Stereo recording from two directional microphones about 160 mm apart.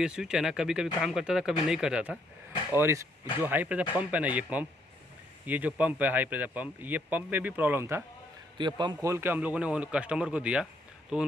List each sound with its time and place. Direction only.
0.0 s speech: 5° right (ahead or behind)
2.7 s speech: 15° right (ahead or behind)
8.5 s a man's voice: 30° right (ahead or behind)
9.1 s speech: 15° right (ahead or behind)